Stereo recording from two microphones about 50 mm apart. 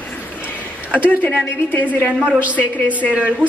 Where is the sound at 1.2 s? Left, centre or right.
Left.